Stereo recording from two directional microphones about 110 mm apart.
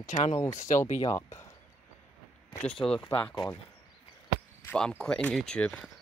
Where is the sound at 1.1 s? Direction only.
25° left (ahead or behind).